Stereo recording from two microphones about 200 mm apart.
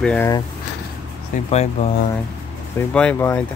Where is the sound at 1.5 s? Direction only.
35° left (ahead or behind).